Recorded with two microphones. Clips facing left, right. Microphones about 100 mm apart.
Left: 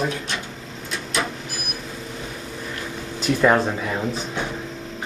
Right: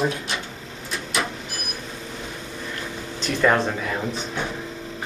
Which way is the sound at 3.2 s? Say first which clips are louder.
Left 2 dB; 10° left (ahead or behind).